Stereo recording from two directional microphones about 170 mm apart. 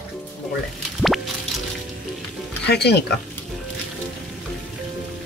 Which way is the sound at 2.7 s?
75° left (ahead or behind).